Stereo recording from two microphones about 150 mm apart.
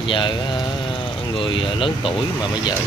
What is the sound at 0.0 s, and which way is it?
Mantra, 35° left (ahead or behind).